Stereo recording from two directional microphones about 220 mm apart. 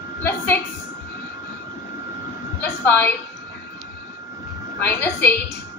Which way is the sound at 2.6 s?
10° left (ahead or behind).